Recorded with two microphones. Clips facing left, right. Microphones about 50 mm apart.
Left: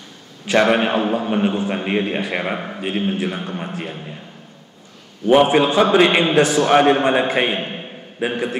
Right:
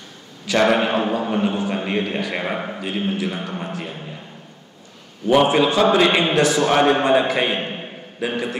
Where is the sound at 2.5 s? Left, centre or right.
Centre.